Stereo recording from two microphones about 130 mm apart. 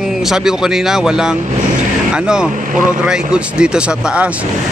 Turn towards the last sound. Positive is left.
turn(degrees=-10)  # may be behind; listen again after turning